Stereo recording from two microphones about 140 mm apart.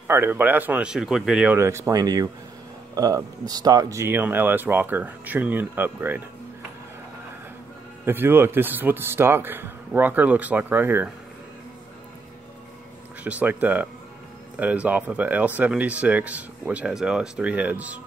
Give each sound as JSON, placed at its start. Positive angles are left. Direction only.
{"t": 0.1, "sound": "speech", "side_deg": -15}
{"t": 1.6, "sound": "speech", "side_deg": -20}
{"t": 8.0, "sound": "speech", "side_deg": -15}
{"t": 13.2, "sound": "speech", "side_deg": -10}